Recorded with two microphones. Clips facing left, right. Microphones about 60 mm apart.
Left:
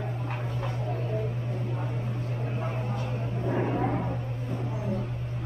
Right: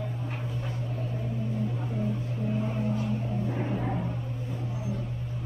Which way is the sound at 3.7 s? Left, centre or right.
Left.